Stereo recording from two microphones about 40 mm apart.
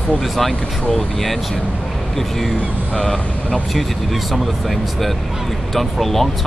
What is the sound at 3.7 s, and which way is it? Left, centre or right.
Speech, centre.